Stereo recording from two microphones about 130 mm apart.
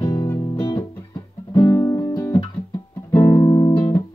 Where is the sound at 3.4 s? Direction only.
40° left (ahead or behind).